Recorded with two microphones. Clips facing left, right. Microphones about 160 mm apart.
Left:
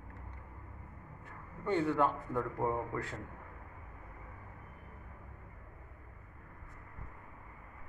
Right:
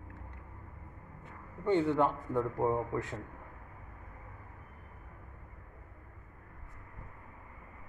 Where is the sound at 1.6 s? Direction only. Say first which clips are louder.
Right 3 dB; 20° right (ahead or behind).